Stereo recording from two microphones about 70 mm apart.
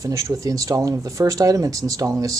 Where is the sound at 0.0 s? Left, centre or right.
Right.